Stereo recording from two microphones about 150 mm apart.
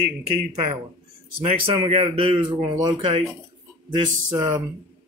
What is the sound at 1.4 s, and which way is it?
Speech, 40° right (ahead or behind).